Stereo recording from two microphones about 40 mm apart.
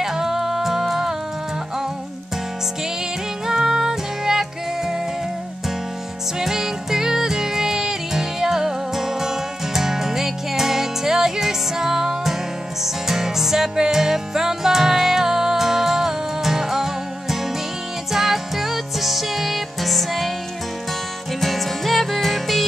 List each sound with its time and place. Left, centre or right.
0.0 s music: centre
3.4 s music: centre
6.4 s music: centre
21.4 s music: centre